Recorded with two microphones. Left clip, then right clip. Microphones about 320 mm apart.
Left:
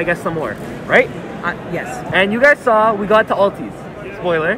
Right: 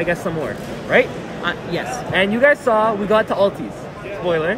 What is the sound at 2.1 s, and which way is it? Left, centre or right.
Speech, centre.